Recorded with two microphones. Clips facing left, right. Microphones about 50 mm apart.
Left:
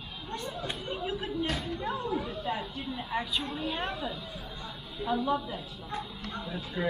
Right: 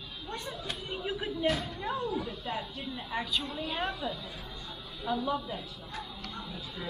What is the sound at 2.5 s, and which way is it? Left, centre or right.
A woman's voice, centre.